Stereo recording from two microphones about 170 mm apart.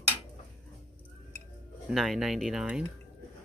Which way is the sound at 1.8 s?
Centre (ahead or behind).